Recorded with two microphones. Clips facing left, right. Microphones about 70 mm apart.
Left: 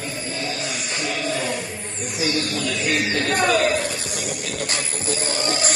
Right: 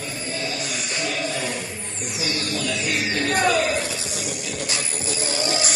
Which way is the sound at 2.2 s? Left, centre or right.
Left.